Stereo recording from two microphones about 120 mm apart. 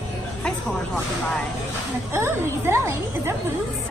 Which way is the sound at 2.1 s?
20° right (ahead or behind).